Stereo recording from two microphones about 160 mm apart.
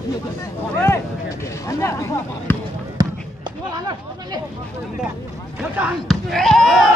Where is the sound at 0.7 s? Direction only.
15° left (ahead or behind).